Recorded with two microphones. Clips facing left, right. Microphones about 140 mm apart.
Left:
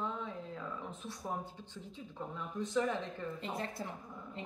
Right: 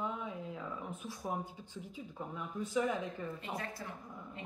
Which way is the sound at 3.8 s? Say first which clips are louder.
Left 3 dB; 25° left (ahead or behind).